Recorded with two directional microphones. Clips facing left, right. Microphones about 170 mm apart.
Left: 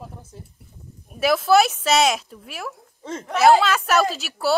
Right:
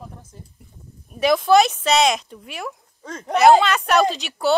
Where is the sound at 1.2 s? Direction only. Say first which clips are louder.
Right 2 dB; 5° left (ahead or behind).